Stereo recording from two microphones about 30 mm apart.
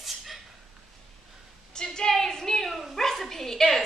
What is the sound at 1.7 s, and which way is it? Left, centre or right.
A woman's voice, left.